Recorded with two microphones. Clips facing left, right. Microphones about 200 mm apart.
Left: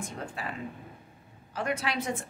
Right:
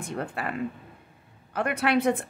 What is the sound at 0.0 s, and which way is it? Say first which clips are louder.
A woman's voice: right 5 dB; 60° right (ahead or behind).